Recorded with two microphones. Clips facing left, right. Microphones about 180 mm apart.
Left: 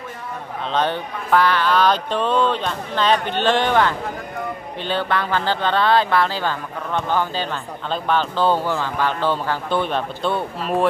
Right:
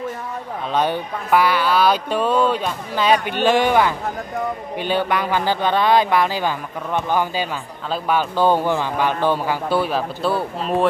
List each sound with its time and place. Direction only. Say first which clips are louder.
0.7 s speech: right 1 dB; 10° right (ahead or behind)